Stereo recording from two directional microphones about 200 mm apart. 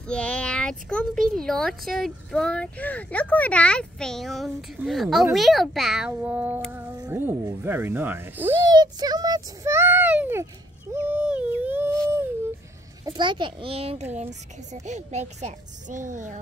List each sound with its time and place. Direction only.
0.1 s a child's voice: 5° left (ahead or behind)
10.9 s a sound: 10° right (ahead or behind)
13.0 s a child's voice: 20° right (ahead or behind); by 16.3 s 40° right (ahead or behind)